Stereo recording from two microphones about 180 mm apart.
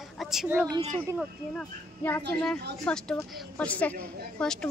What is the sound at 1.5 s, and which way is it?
A woman's voice, 10° left (ahead or behind).